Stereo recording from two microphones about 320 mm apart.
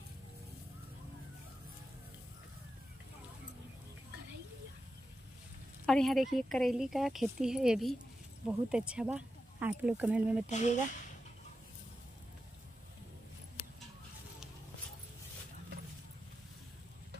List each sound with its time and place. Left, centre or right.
5.9 s speech: centre
10.5 s speech: left